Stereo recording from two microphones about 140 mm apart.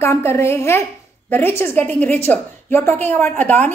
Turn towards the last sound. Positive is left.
turn(degrees=10)  # may be behind; listen again after turning